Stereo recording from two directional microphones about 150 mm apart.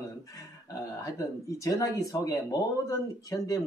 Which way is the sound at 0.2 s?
20° left (ahead or behind).